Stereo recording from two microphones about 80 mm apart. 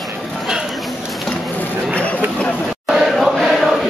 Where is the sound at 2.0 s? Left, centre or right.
Centre.